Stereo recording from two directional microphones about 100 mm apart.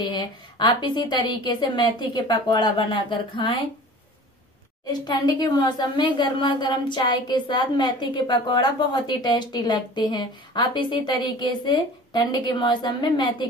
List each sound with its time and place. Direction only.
0.0 s a woman's voice: 45° left (ahead or behind)
5.0 s a woman's voice: 40° left (ahead or behind)